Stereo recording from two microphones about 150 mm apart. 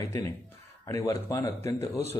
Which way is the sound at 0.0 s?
20° left (ahead or behind).